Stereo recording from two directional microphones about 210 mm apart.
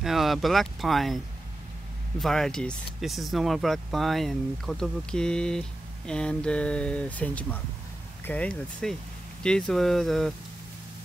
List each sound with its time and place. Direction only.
0.0 s speech: centre (ahead or behind)